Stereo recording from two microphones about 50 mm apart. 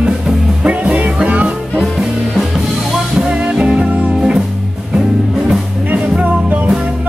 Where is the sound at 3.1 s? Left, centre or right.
Centre.